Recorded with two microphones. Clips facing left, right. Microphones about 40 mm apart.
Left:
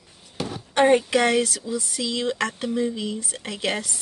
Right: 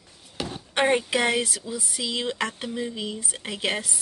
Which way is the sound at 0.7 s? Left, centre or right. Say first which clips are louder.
Left 4 dB; centre.